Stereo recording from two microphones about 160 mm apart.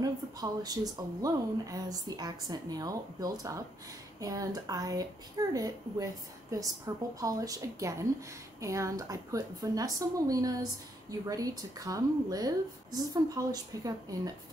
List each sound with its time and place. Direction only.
0.0 s a woman's voice: 25° right (ahead or behind)